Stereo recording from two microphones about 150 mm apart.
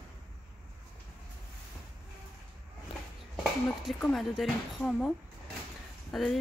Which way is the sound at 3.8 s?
Centre (ahead or behind).